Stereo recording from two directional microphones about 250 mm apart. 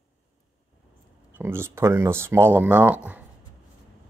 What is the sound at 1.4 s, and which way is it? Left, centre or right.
Speech, centre.